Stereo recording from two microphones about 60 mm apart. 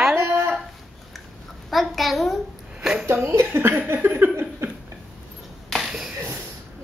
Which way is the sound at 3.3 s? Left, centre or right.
Right.